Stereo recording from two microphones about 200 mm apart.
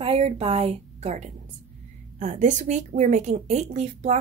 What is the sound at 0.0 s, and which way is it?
A woman's voice, 30° right (ahead or behind).